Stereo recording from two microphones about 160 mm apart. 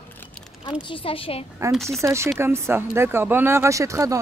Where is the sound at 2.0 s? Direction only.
15° right (ahead or behind).